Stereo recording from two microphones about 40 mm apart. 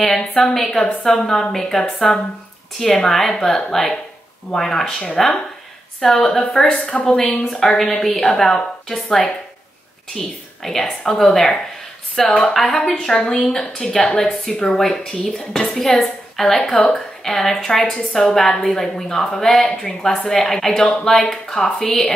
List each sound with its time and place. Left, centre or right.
0.0 s a woman's voice: centre